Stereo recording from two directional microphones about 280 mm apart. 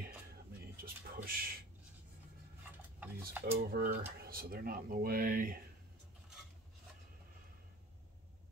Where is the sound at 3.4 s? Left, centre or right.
Right.